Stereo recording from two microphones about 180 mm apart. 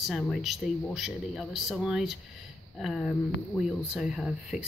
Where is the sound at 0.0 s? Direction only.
Centre (ahead or behind).